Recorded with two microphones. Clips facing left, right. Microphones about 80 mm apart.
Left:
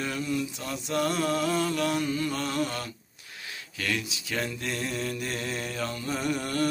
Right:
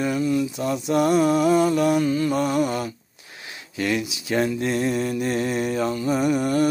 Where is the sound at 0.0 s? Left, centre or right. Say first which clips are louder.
Right 8 dB; centre.